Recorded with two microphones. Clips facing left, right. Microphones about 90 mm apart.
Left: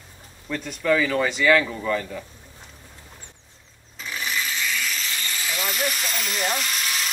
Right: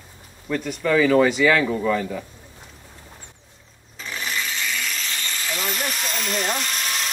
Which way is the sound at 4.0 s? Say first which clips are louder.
Even; centre (ahead or behind).